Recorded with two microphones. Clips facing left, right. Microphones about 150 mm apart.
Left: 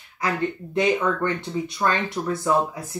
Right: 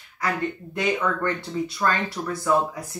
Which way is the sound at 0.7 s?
25° left (ahead or behind).